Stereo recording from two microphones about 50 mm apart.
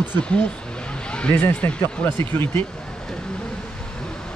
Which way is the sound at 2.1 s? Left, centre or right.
Left.